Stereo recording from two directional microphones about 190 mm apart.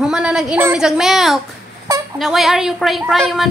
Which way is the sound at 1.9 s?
15° right (ahead or behind).